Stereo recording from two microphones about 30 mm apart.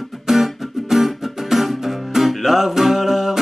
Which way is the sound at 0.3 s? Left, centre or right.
Centre.